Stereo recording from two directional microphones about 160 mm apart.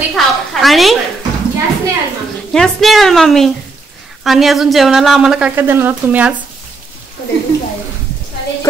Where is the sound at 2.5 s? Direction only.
Centre (ahead or behind).